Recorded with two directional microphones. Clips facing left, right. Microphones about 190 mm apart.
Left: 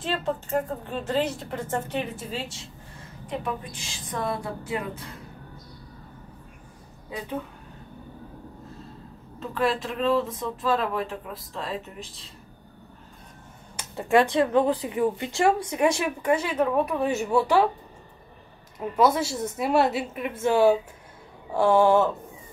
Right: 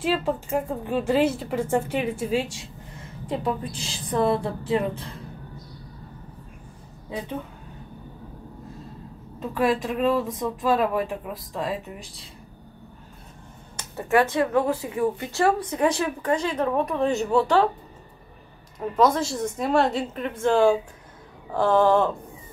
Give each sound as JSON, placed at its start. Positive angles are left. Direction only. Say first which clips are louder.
{"t": 0.0, "sound": "speech", "louder": "right 4 dB", "side_deg": -10}
{"t": 3.3, "sound": "a woman's voice", "louder": "right 4 dB", "side_deg": -30}
{"t": 9.4, "sound": "speech", "louder": "right 3 dB", "side_deg": -15}
{"t": 13.7, "sound": "speech", "louder": "even", "side_deg": 15}
{"t": 18.9, "sound": "speech", "louder": "right 1 dB", "side_deg": 5}